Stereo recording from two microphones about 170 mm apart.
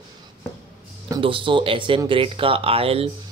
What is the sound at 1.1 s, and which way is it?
Speech, 30° right (ahead or behind).